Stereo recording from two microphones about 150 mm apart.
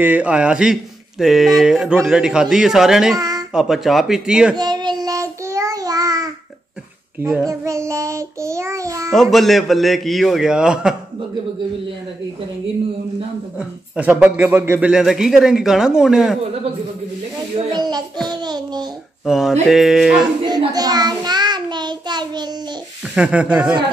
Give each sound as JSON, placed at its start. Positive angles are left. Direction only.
{"t": 0.0, "sound": "speech", "side_deg": -10}
{"t": 3.2, "sound": "a sound", "side_deg": -25}
{"t": 3.5, "sound": "speech", "side_deg": 0}
{"t": 4.6, "sound": "child singing", "side_deg": -30}
{"t": 9.1, "sound": "speech", "side_deg": 0}
{"t": 13.6, "sound": "speech", "side_deg": -10}
{"t": 17.6, "sound": "a sound", "side_deg": -30}
{"t": 19.2, "sound": "a sound", "side_deg": -5}
{"t": 19.7, "sound": "speech", "side_deg": 0}
{"t": 20.4, "sound": "child singing", "side_deg": -25}
{"t": 23.1, "sound": "speech", "side_deg": -10}